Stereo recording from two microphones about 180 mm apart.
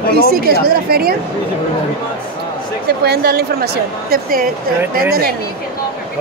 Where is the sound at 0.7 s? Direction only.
55° right (ahead or behind).